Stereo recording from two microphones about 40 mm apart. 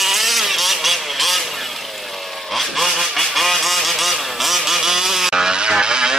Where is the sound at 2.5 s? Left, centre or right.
Centre.